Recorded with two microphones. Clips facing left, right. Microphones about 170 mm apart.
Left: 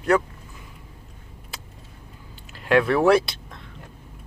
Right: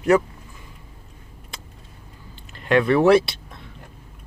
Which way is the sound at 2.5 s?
5° left (ahead or behind).